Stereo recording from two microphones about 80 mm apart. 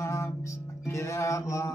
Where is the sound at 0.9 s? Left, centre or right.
Left.